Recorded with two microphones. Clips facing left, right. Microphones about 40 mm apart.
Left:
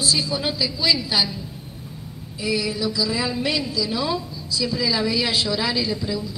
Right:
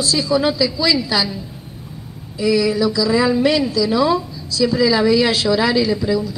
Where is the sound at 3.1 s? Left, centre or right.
Centre.